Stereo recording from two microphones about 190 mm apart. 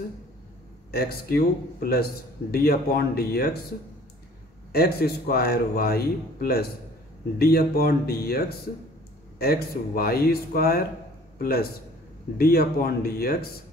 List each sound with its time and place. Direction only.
0.9 s a man's voice: 55° left (ahead or behind)
4.7 s a man's voice: 55° left (ahead or behind)